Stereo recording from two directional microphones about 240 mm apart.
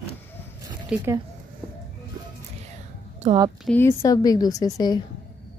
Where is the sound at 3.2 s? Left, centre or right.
Centre.